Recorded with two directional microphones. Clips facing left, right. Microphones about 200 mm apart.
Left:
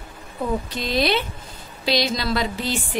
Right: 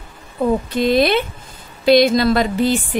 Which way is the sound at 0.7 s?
55° right (ahead or behind).